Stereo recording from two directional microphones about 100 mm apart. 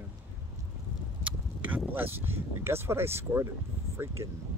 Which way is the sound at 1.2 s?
15° right (ahead or behind).